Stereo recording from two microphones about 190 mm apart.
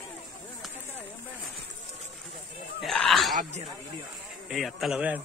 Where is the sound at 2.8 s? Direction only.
Centre (ahead or behind).